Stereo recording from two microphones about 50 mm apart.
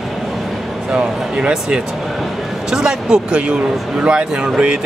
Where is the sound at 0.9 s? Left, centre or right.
Centre.